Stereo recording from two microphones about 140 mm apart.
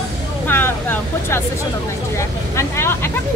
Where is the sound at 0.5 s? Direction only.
15° left (ahead or behind).